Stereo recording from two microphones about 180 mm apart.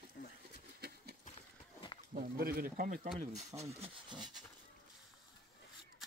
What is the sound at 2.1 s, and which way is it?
Speech, 55° right (ahead or behind).